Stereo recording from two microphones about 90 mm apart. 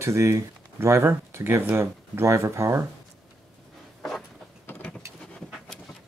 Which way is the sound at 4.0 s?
5° left (ahead or behind).